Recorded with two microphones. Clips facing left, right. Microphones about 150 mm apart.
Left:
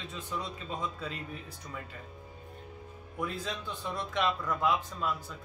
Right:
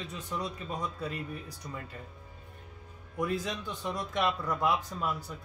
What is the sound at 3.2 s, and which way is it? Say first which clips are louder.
Speech: right 4 dB; 15° right (ahead or behind).